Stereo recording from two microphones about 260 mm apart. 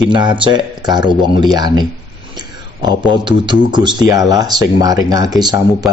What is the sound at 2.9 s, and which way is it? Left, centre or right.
Speech, centre.